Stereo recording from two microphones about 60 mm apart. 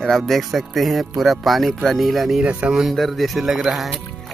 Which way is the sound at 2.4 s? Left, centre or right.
Right.